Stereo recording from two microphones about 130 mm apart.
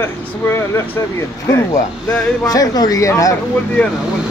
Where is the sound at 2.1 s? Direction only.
30° left (ahead or behind).